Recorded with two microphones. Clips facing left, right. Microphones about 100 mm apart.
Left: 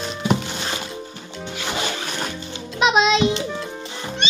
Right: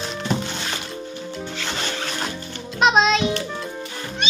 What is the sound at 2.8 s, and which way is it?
Music, centre (ahead or behind).